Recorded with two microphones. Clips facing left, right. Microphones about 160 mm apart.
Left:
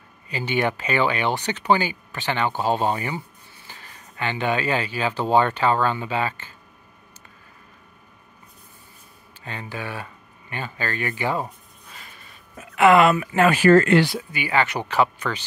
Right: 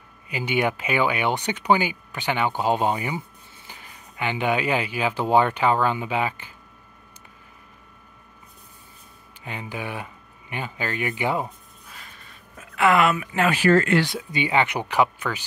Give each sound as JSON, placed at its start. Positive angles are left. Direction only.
{"t": 0.3, "sound": "speech", "side_deg": -10}
{"t": 9.4, "sound": "speech", "side_deg": -15}
{"t": 12.7, "sound": "speech", "side_deg": 25}
{"t": 14.3, "sound": "speech", "side_deg": -20}